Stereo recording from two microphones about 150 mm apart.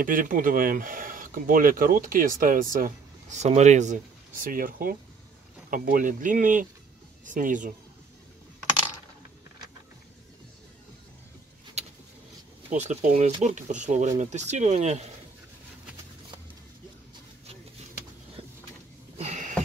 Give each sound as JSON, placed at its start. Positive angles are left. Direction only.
{"t": 0.0, "sound": "speech", "side_deg": -65}
{"t": 12.6, "sound": "speech", "side_deg": -50}
{"t": 19.1, "sound": "a sound", "side_deg": -50}